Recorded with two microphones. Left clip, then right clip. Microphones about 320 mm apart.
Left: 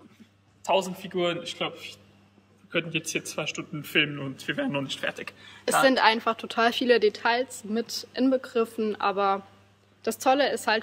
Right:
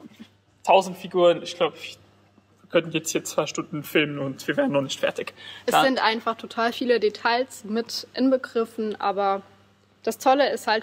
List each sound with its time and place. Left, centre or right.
0.7 s speech: right
5.9 s a woman's voice: centre